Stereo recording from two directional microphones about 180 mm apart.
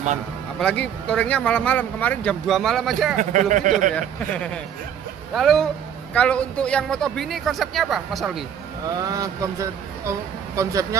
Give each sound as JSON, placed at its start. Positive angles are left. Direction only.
{"t": 0.6, "sound": "speech", "side_deg": 5}
{"t": 3.2, "sound": "speech", "side_deg": -45}
{"t": 3.9, "sound": "speech", "side_deg": 5}
{"t": 8.8, "sound": "speech", "side_deg": -20}